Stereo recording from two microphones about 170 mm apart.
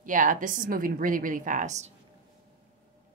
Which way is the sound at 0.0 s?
50° right (ahead or behind).